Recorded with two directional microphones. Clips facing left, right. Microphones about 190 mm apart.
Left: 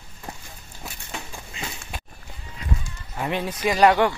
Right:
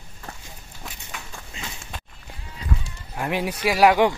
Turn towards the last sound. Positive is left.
turn(degrees=-5)  # may be behind; listen again after turning